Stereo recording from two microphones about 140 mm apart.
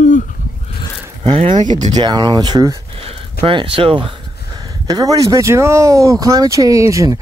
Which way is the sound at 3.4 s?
40° right (ahead or behind).